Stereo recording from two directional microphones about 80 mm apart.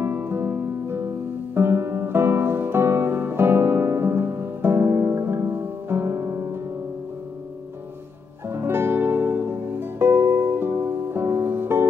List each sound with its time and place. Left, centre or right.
0.0 s music: right
8.5 s music: right